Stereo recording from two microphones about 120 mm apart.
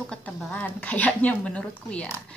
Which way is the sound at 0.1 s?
10° left (ahead or behind).